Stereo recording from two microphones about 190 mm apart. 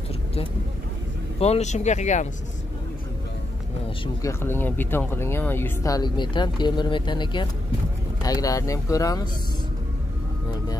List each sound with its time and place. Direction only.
1.4 s speech: 35° left (ahead or behind)
4.0 s speech: 15° left (ahead or behind)